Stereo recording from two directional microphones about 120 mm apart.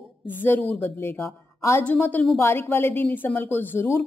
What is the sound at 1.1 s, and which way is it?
Speech, 25° left (ahead or behind).